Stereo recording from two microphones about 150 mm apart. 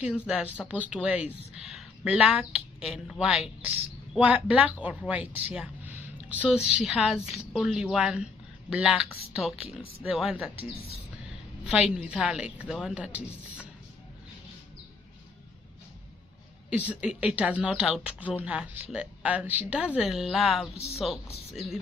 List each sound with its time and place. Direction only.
0.3 s a woman's voice: 10° right (ahead or behind)
11.7 s speech: 5° right (ahead or behind)
16.7 s speech: 10° right (ahead or behind)
20.7 s speech: 45° left (ahead or behind)
21.0 s speech: centre (ahead or behind)